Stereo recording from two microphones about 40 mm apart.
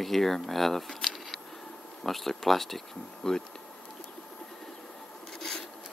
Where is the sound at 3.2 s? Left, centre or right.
Centre.